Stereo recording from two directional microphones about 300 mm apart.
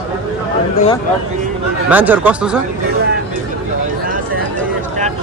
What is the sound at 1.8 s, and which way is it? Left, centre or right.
Speech, centre.